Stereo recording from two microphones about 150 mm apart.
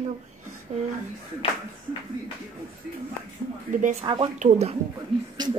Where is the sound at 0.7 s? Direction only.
50° right (ahead or behind).